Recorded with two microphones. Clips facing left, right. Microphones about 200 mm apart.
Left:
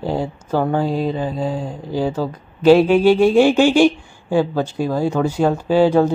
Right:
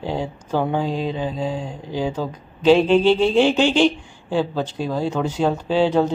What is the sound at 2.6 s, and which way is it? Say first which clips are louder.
Speech: left 3 dB; 10° left (ahead or behind).